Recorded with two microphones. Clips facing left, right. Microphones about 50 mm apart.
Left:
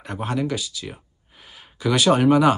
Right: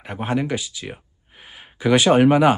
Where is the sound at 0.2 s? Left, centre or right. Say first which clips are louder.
Right 2 dB; right.